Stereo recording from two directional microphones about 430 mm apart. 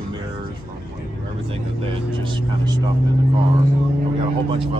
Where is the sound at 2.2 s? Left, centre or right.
Centre.